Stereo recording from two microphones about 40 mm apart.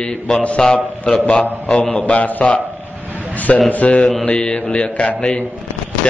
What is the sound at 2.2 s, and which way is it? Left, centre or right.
Speech, left.